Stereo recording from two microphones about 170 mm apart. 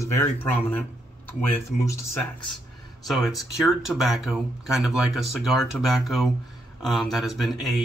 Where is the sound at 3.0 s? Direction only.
Centre (ahead or behind).